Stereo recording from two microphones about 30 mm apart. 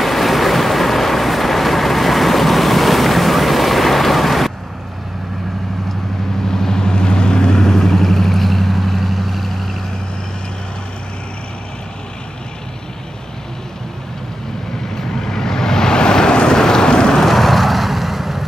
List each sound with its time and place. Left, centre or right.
0.0 s vehicle: centre
6.4 s vehicle: centre
15.0 s vehicle: centre
17.2 s vehicle: centre